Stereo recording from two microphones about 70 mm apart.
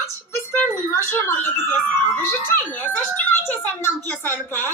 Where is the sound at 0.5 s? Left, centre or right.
Left.